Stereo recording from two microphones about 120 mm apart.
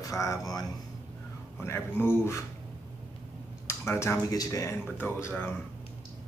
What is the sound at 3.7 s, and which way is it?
Speech, 20° left (ahead or behind).